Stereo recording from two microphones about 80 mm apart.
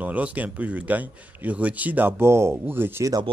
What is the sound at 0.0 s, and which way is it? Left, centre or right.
Speech, centre.